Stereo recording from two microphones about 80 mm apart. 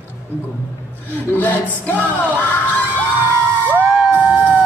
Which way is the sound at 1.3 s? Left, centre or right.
Left.